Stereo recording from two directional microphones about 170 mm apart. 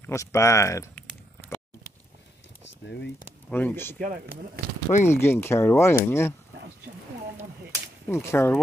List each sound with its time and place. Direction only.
0.0 s speech: 15° left (ahead or behind)
3.4 s speech: 10° left (ahead or behind)
4.0 s speech: 55° right (ahead or behind)
5.0 s speech: 15° left (ahead or behind)
8.1 s speech: 15° left (ahead or behind)